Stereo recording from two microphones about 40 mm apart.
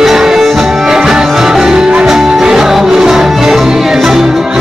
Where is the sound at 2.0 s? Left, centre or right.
Centre.